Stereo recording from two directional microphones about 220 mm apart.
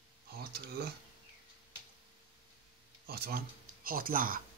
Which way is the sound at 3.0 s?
45° right (ahead or behind).